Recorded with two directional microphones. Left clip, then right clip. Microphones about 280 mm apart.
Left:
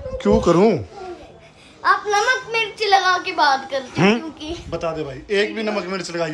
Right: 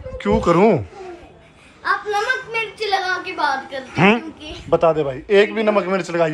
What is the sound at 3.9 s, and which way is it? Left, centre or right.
A man's voice, centre.